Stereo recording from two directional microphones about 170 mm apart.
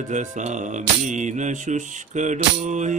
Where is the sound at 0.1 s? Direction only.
45° right (ahead or behind).